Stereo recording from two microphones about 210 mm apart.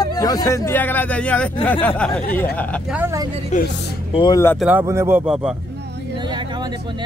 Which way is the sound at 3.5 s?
35° left (ahead or behind).